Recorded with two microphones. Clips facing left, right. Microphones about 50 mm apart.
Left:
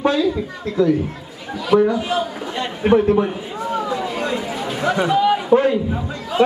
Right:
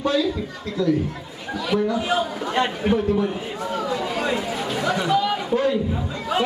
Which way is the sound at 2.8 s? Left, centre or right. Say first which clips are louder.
Left 11 dB; left.